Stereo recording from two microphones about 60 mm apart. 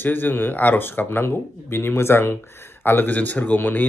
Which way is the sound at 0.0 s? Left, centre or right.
Left.